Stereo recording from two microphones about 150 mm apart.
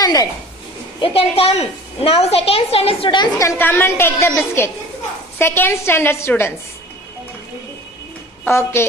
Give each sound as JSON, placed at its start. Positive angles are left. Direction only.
{"t": 0.0, "sound": "a woman's voice", "side_deg": 25}
{"t": 1.0, "sound": "a woman's voice", "side_deg": 40}
{"t": 3.3, "sound": "a woman's voice", "side_deg": 15}
{"t": 5.4, "sound": "a woman's voice", "side_deg": 15}
{"t": 8.5, "sound": "a woman's voice", "side_deg": 15}